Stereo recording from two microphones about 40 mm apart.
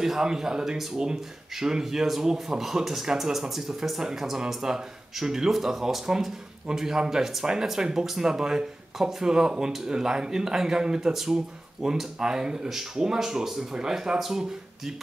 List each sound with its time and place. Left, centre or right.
0.0 s speech: centre